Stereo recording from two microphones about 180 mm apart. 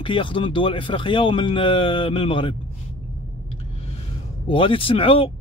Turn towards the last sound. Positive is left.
turn(degrees=30)  # may be behind; listen again after turning